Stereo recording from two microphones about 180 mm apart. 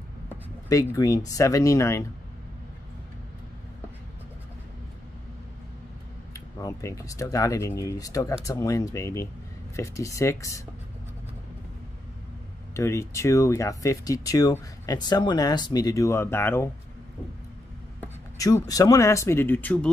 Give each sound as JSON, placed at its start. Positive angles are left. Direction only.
{"t": 0.7, "sound": "speech", "side_deg": 20}
{"t": 6.3, "sound": "speech", "side_deg": 15}
{"t": 12.7, "sound": "speech", "side_deg": 15}
{"t": 18.0, "sound": "speech", "side_deg": 20}